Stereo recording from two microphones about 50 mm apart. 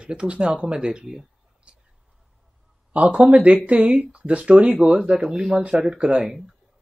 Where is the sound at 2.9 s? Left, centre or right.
Right.